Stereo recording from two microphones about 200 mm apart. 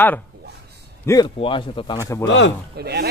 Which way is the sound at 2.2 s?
65° left (ahead or behind).